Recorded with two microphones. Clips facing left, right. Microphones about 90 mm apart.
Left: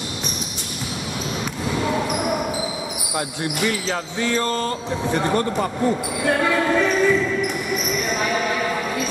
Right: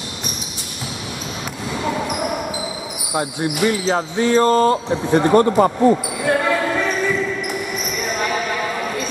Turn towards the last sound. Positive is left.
turn(degrees=0)  # may be behind; listen again after turning